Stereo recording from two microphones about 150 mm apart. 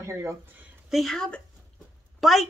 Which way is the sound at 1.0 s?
5° left (ahead or behind).